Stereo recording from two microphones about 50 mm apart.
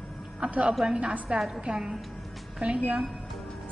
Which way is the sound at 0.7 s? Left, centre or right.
Centre.